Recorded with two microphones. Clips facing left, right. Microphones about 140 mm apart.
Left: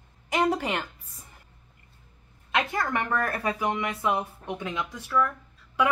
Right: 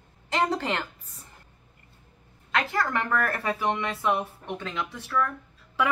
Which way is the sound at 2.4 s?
20° left (ahead or behind).